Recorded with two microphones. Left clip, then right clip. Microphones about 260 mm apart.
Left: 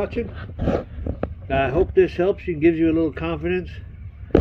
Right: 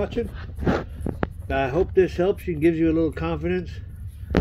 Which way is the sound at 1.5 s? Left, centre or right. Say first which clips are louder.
Left 3 dB; centre.